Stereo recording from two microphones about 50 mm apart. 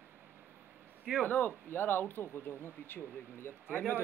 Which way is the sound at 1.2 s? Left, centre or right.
Left.